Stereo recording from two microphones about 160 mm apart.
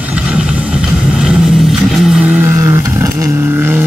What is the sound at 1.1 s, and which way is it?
Vehicle, centre (ahead or behind).